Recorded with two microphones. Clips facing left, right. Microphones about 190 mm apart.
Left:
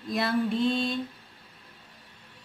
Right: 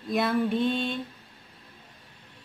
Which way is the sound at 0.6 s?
35° left (ahead or behind).